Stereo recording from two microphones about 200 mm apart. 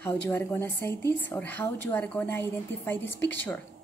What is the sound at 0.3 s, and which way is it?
Speech, 10° left (ahead or behind).